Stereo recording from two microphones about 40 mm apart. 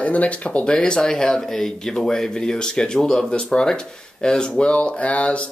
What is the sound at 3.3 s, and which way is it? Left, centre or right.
Speech, left.